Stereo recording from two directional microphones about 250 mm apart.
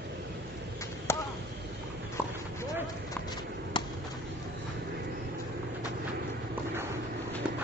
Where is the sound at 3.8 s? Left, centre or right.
Centre.